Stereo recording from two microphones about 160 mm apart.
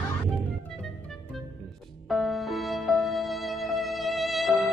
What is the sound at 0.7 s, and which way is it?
Music, centre (ahead or behind).